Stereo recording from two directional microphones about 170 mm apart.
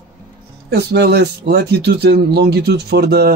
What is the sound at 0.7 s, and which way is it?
Speech, 75° right (ahead or behind).